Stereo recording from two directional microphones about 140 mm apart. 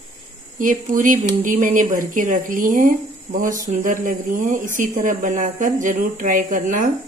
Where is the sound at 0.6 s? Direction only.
70° right (ahead or behind).